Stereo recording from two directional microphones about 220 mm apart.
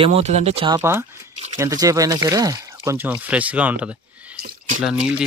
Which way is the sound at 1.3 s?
30° right (ahead or behind).